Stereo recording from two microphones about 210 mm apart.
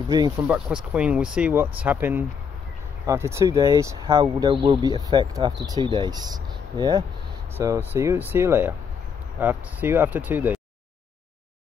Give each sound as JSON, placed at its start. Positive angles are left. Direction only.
{"t": 0.4, "sound": "speech", "side_deg": -5}